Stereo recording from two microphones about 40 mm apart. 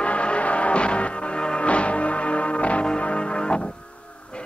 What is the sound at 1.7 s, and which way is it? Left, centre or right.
Music, left.